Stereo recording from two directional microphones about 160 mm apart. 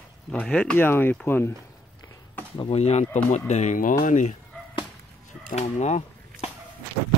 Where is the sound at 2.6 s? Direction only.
40° left (ahead or behind).